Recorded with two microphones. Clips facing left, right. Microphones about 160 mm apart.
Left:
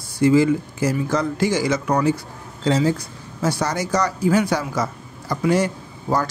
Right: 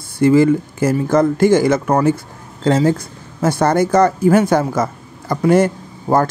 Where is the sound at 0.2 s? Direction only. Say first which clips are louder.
Right 4 dB; 55° right (ahead or behind).